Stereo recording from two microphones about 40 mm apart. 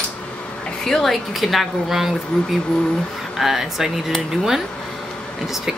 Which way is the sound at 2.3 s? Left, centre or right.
Left.